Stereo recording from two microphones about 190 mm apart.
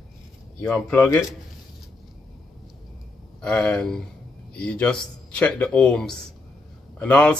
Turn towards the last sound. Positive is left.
turn(degrees=5)  # may be behind; listen again after turning